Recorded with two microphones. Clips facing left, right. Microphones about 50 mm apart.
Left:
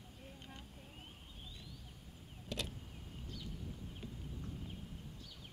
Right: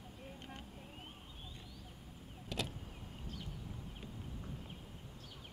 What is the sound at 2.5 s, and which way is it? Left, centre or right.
Vehicle, centre.